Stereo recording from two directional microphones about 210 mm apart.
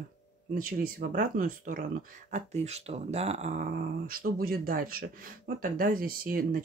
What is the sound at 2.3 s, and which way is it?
Speech, 30° right (ahead or behind).